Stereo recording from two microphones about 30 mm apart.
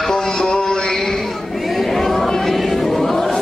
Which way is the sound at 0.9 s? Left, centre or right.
Centre.